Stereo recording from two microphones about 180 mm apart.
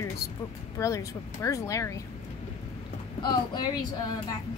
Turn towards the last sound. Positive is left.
turn(degrees=25)  # may be behind; listen again after turning